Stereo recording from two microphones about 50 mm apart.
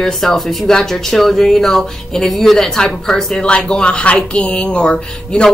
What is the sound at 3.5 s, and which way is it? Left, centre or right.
Speech, left.